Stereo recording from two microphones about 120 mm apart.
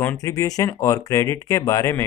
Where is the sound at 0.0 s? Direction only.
25° left (ahead or behind).